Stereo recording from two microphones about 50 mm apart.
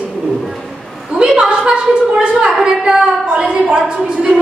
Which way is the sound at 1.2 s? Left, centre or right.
Centre.